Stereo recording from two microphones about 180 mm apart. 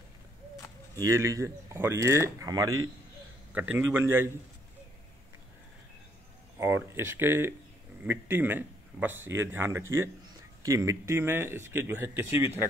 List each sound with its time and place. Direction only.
0.9 s speech: 20° right (ahead or behind)
3.5 s speech: 10° right (ahead or behind)
6.6 s speech: 15° right (ahead or behind)